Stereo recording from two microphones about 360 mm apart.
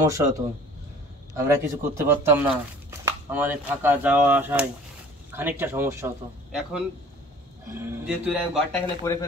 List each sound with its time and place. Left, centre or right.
0.0 s speech: centre